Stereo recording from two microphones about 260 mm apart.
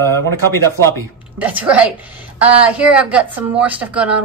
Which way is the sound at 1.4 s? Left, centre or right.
Centre.